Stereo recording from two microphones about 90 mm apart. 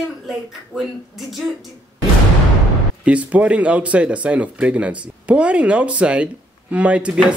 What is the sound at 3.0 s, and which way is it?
Speech, 15° right (ahead or behind).